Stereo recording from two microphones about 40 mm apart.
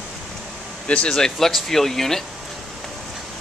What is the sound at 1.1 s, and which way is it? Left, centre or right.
Speech, centre.